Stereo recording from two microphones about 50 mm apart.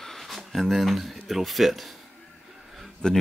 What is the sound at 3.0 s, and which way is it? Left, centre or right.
Speech, centre.